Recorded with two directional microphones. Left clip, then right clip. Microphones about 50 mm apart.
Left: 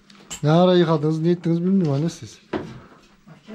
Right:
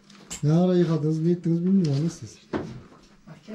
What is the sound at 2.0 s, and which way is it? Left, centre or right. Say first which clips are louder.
Speech: left 4 dB; left.